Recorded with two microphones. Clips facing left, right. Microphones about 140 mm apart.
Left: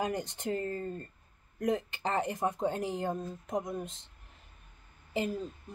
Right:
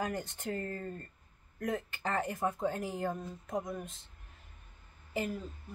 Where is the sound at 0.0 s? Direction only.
20° left (ahead or behind).